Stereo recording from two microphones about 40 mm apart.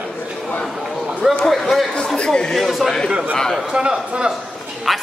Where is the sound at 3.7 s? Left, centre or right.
Right.